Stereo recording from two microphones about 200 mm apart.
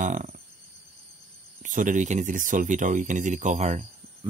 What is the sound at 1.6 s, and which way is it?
Speech, 40° right (ahead or behind).